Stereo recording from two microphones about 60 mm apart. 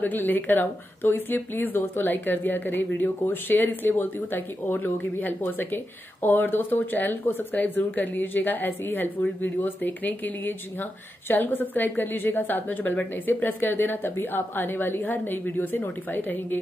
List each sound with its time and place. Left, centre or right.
0.0 s speech: left